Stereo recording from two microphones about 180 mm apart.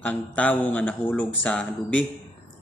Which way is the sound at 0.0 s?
10° left (ahead or behind).